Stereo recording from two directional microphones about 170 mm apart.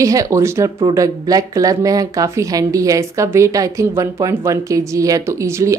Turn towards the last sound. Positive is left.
turn(degrees=-15)  # may be behind; listen again after turning